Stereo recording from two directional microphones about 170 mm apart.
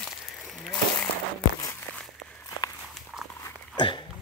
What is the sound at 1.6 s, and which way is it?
Walk, 15° left (ahead or behind).